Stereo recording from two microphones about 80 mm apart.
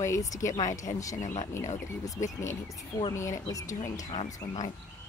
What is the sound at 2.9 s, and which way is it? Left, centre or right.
Speech, left.